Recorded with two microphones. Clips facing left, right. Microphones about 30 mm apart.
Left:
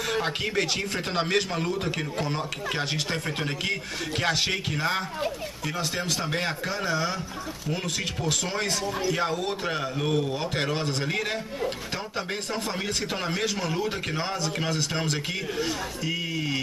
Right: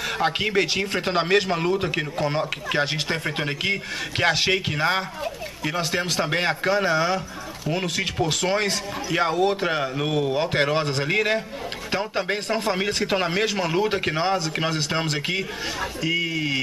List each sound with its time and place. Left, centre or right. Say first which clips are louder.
0.4 s a man's voice: right 5 dB; right